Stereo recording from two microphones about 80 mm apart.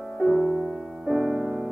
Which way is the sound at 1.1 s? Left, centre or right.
Centre.